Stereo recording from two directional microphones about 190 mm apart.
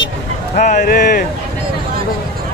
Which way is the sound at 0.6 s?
40° left (ahead or behind).